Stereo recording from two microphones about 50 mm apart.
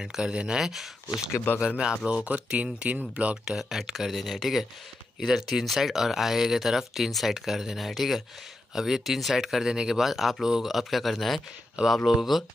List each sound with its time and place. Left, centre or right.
0.0 s speech: centre
1.5 s speech: left
1.8 s speech: right
3.4 s speech: centre
11.8 s speech: centre
12.1 s speech: centre